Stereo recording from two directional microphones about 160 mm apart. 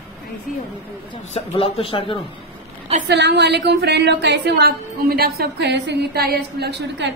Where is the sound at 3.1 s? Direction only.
90° right.